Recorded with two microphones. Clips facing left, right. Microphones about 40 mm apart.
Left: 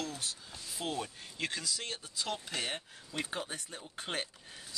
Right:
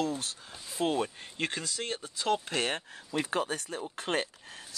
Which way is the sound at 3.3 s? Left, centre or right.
Right.